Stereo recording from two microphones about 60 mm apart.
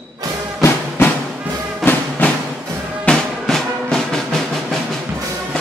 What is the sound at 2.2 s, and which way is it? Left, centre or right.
Music, left.